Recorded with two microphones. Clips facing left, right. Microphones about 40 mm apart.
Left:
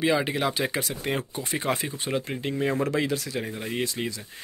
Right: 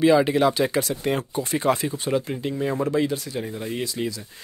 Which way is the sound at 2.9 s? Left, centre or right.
Left.